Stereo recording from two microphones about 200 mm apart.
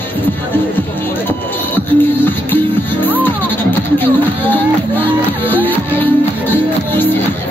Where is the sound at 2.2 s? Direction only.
10° left (ahead or behind).